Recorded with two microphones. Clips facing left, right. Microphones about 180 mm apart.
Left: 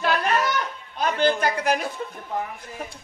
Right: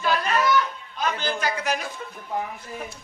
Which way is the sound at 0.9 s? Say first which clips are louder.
Left 6 dB; 55° left (ahead or behind).